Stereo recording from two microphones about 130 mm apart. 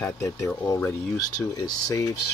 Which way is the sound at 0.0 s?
20° left (ahead or behind).